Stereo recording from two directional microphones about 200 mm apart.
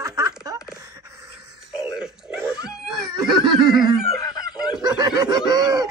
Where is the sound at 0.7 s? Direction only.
15° right (ahead or behind).